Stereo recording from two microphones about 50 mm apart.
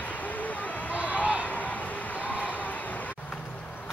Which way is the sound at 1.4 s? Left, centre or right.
Left.